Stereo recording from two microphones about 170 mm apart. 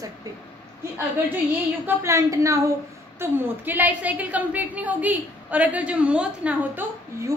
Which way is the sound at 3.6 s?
10° right (ahead or behind).